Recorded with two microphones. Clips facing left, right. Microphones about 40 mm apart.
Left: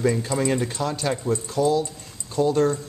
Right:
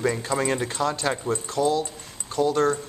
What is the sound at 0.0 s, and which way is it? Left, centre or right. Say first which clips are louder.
Speech: left 2 dB; centre.